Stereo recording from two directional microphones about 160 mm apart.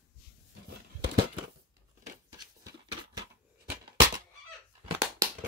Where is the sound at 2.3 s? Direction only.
25° right (ahead or behind).